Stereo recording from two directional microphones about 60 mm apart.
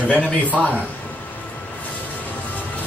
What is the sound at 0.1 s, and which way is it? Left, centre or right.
Speech, right.